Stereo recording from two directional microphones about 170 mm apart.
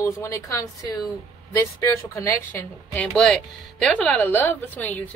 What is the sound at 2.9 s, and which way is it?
A woman's voice, 5° left (ahead or behind).